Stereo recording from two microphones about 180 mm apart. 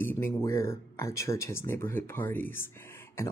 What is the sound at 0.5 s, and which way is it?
Speech, 15° left (ahead or behind).